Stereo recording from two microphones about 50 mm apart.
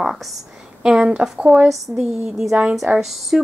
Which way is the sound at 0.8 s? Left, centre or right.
Centre.